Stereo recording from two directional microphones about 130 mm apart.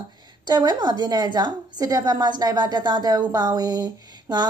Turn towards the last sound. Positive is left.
turn(degrees=-30)  # may be behind; listen again after turning